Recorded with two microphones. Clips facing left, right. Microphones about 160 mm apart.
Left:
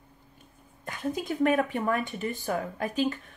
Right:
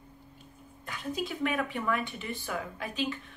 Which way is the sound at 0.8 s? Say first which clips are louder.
Left 4 dB; 45° left (ahead or behind).